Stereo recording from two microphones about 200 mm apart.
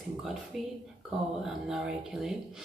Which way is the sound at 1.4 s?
Centre (ahead or behind).